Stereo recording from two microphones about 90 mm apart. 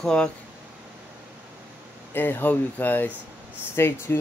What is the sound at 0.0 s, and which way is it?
Speech, 10° left (ahead or behind).